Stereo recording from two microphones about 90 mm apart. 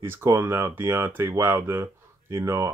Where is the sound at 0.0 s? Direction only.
30° right (ahead or behind).